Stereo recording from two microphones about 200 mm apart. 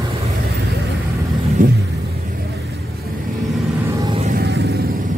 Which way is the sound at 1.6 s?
40° right (ahead or behind).